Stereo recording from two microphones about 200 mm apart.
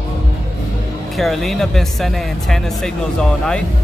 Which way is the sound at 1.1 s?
Centre (ahead or behind).